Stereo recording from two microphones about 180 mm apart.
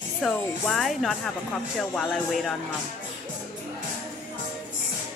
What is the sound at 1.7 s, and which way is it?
Speech, centre (ahead or behind).